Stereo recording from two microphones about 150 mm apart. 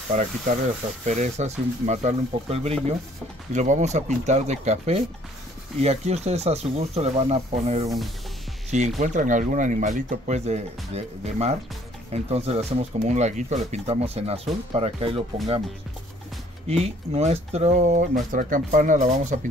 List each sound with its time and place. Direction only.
0.1 s speech: 55° right (ahead or behind)
16.6 s speech: 45° right (ahead or behind)
18.3 s speech: 65° right (ahead or behind)